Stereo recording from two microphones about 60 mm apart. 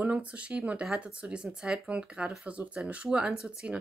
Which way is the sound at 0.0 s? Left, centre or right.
Right.